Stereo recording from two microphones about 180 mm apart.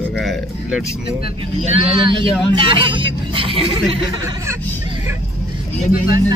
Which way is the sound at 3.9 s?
20° right (ahead or behind).